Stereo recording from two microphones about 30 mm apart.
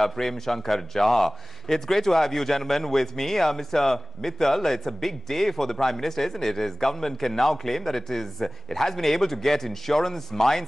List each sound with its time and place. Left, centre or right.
0.0 s a man's voice: centre